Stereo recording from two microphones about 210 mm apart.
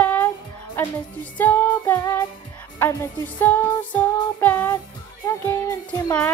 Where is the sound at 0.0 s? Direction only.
10° left (ahead or behind).